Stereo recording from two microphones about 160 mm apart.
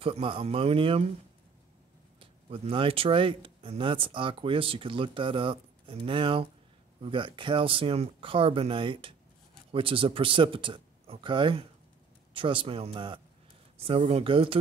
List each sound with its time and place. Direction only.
0.0 s speech: 35° right (ahead or behind)
2.1 s speech: 35° right (ahead or behind)